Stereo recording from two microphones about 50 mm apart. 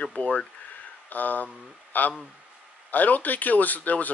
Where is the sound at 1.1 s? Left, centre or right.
Left.